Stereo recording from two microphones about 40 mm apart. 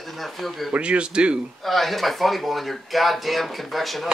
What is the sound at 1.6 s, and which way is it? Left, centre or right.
Speech, centre.